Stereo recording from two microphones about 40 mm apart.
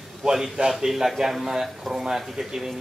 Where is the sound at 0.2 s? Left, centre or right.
Centre.